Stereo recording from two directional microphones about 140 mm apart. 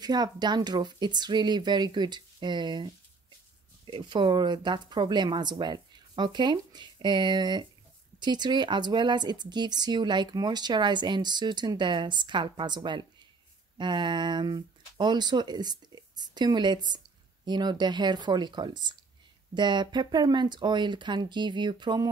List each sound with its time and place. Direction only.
0.0 s speech: 30° right (ahead or behind)